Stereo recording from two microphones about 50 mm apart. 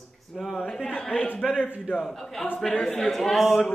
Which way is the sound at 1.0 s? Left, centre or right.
Left.